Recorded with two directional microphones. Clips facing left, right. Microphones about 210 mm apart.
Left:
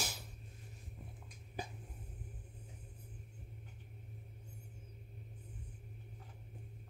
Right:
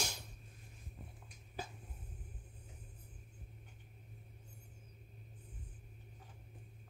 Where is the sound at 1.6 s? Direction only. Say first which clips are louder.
Left 1 dB; 15° left (ahead or behind).